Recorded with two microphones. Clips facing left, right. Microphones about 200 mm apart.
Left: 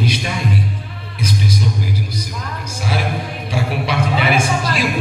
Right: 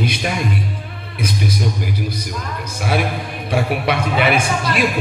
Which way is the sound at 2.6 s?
55° right (ahead or behind).